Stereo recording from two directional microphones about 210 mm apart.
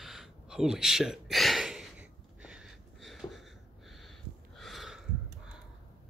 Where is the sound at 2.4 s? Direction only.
5° right (ahead or behind).